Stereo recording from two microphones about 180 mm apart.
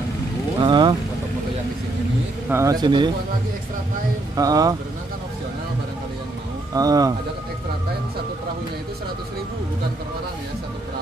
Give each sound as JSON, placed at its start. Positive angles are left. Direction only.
{"t": 0.6, "sound": "speech", "side_deg": -25}
{"t": 2.5, "sound": "speech", "side_deg": -20}
{"t": 4.4, "sound": "speech", "side_deg": -20}
{"t": 6.7, "sound": "speech", "side_deg": -20}